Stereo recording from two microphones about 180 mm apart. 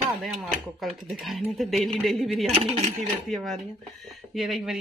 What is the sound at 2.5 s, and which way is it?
Speech, 35° right (ahead or behind).